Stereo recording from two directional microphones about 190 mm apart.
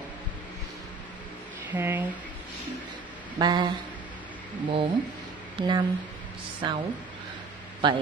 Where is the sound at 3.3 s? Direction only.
20° right (ahead or behind).